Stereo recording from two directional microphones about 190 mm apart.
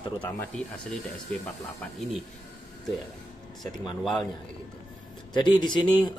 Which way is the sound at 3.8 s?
25° left (ahead or behind).